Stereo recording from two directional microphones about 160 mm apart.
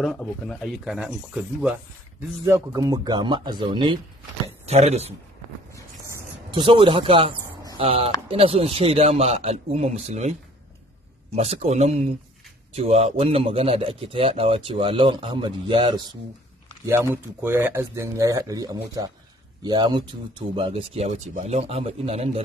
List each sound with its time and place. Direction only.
0.0 s speech: 5° left (ahead or behind)
2.4 s speech: 15° right (ahead or behind)
4.6 s a man's voice: 40° right (ahead or behind)
6.5 s a man's voice: 30° right (ahead or behind)
11.3 s a man's voice: 40° right (ahead or behind)
16.8 s a man's voice: 15° right (ahead or behind); by 22.4 s 40° right (ahead or behind)